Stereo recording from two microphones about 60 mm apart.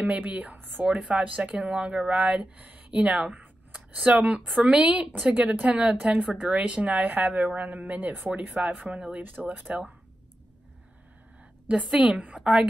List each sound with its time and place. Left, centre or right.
0.2 s speech: right
0.8 s speech: centre
9.2 s speech: right
11.6 s speech: right
12.4 s a woman's voice: centre